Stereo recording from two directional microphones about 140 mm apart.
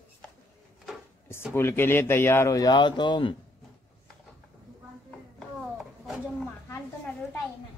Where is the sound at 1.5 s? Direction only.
15° left (ahead or behind); by 3.3 s 35° left (ahead or behind).